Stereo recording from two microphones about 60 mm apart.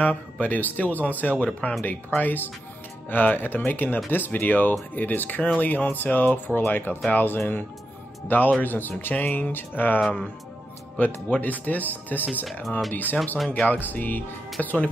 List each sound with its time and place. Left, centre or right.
0.0 s speech: left
10.0 s speech: centre